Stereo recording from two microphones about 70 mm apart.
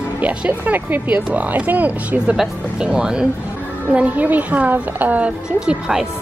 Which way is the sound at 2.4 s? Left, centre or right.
Centre.